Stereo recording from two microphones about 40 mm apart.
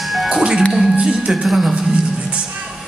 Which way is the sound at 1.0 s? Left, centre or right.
Centre.